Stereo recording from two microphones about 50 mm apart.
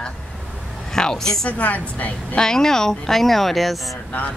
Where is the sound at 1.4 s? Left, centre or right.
Left.